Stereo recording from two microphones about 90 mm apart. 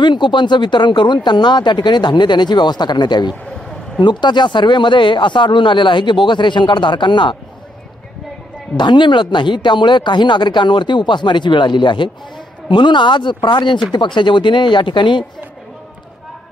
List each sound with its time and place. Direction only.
0.0 s speech: 60° left (ahead or behind)
8.7 s speech: 60° left (ahead or behind)